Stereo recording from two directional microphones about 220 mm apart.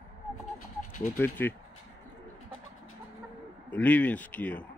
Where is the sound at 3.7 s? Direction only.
5° left (ahead or behind).